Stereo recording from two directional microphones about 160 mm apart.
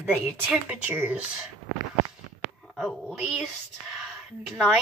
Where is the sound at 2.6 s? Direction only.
Centre (ahead or behind).